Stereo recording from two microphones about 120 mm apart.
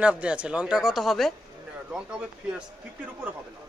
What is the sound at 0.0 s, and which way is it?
Speech, 10° right (ahead or behind).